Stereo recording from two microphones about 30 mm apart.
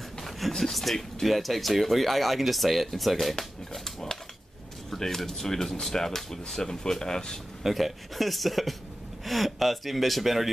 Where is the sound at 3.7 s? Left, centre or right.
Centre.